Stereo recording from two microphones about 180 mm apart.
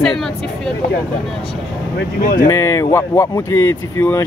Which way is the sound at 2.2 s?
50° left (ahead or behind).